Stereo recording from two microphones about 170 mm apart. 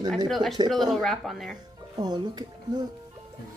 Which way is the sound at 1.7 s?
25° right (ahead or behind).